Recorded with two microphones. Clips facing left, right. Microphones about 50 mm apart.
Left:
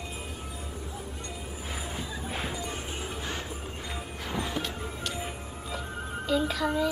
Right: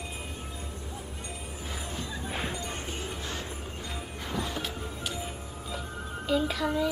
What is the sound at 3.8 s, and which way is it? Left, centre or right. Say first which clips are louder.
Music: left 1 dB; centre.